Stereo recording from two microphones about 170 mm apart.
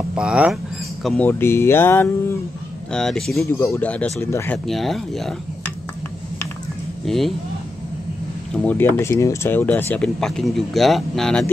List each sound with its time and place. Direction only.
0.1 s speech: 5° right (ahead or behind)
1.0 s speech: 10° left (ahead or behind)
3.4 s speech: 15° left (ahead or behind)
4.6 s speech: centre (ahead or behind)
7.1 s speech: centre (ahead or behind)
8.6 s speech: 10° left (ahead or behind)